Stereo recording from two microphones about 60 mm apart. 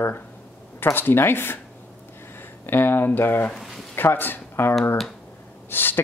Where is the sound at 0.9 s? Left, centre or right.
Left.